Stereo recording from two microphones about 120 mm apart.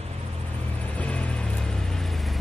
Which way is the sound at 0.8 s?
10° left (ahead or behind).